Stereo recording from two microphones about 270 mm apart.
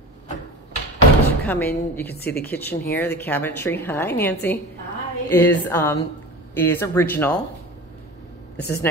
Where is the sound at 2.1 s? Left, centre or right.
Left.